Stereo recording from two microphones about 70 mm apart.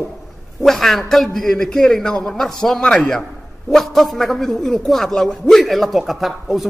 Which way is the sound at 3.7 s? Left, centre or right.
Centre.